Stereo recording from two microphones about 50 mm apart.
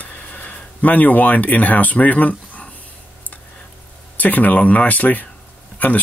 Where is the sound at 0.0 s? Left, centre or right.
Left.